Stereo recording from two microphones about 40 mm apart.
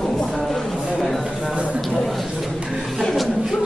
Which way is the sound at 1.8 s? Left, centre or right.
Centre.